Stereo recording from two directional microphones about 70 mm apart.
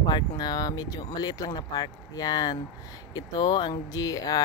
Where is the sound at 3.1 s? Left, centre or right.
Left.